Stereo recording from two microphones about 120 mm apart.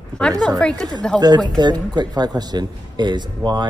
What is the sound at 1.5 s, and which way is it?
Speech, 35° right (ahead or behind).